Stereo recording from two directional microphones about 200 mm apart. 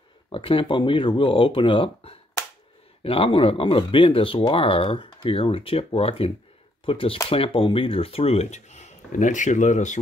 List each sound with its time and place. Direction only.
0.3 s speech: 25° left (ahead or behind)